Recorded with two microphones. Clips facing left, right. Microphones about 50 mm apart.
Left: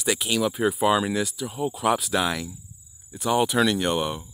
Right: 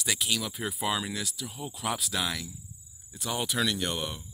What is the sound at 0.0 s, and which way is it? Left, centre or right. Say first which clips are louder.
Speech: left 7 dB; left.